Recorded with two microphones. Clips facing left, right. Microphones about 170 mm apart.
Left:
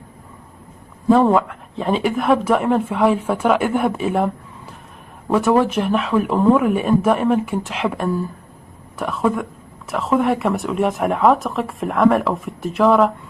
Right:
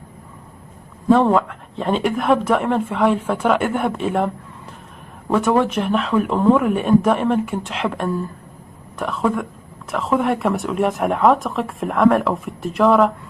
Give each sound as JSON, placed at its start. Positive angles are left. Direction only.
{"t": 1.0, "sound": "speech", "side_deg": 0}
{"t": 5.3, "sound": "speech", "side_deg": 5}